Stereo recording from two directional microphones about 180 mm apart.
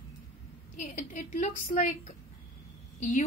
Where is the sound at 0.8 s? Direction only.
45° left (ahead or behind).